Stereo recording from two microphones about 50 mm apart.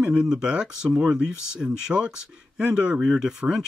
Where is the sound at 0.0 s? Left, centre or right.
Centre.